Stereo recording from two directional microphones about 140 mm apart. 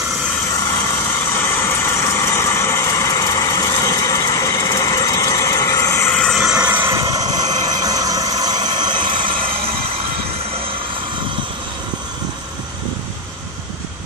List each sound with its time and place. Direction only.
1.3 s vehicle: 15° left (ahead or behind)
6.1 s vehicle: centre (ahead or behind); by 9.0 s 30° right (ahead or behind)